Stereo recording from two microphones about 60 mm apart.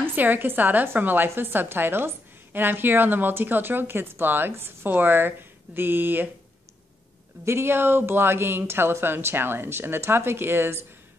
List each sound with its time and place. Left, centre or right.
0.0 s a woman's voice: right
7.4 s a woman's voice: right